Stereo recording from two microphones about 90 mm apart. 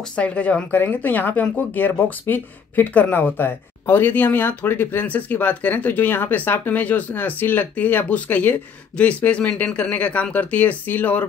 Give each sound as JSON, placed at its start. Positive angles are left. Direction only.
{"t": 0.1, "sound": "speech", "side_deg": 15}